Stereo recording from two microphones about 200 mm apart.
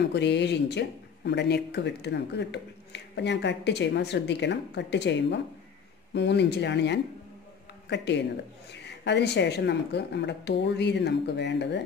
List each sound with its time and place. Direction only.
0.1 s speech: 60° left (ahead or behind)